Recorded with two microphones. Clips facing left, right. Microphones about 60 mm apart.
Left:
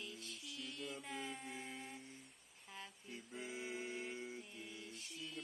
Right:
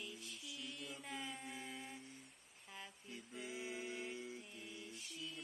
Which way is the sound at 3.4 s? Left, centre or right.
Left.